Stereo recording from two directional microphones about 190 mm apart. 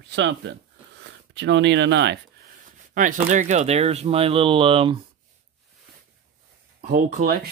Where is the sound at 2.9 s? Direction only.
45° right (ahead or behind).